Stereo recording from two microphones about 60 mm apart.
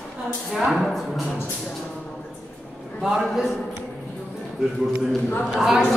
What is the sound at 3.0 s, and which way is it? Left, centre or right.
Speech, centre.